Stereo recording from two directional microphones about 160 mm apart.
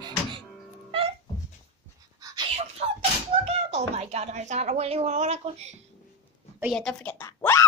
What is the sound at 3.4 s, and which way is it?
Speech, 40° right (ahead or behind).